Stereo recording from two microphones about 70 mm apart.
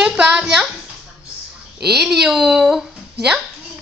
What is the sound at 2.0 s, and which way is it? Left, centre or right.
Speech, centre.